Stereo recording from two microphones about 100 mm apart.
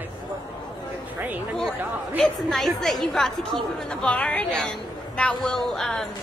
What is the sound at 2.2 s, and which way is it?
A woman's voice, 5° left (ahead or behind).